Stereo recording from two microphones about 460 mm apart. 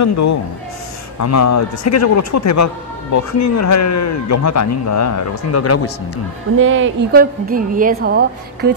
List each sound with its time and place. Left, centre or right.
0.0 s speech: left
6.6 s a woman's voice: right